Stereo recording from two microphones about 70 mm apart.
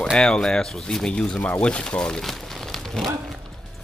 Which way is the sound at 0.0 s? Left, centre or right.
Centre.